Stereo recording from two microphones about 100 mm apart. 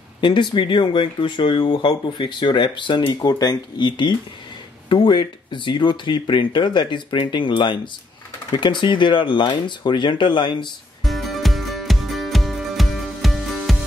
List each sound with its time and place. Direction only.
0.2 s speech: 50° left (ahead or behind)
11.1 s music: centre (ahead or behind)